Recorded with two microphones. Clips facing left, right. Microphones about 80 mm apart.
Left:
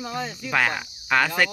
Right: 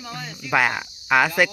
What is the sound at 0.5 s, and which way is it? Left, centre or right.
Cricket, centre.